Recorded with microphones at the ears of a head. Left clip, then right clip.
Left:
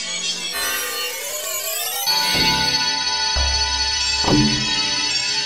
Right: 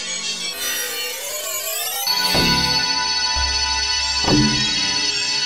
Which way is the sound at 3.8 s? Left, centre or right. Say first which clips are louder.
Even; centre.